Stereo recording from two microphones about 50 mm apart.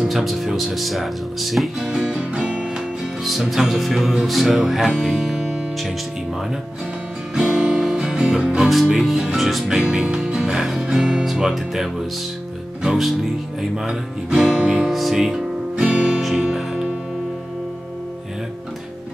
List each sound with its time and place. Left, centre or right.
0.0 s speech: centre
1.8 s music: centre
3.3 s speech: centre
5.2 s music: centre
7.3 s music: centre
8.6 s speech: centre
9.8 s music: centre
11.2 s speech: centre
14.9 s speech: centre
15.7 s music: right